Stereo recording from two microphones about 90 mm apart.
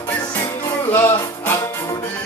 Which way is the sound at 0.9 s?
25° left (ahead or behind).